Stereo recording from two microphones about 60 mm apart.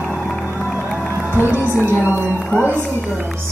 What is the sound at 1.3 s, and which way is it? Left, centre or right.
Crowd, right.